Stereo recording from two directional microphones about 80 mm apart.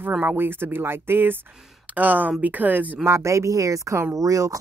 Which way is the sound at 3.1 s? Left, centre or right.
Right.